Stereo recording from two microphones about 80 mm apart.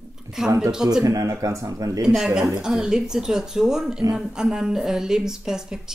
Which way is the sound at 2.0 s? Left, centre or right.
Centre.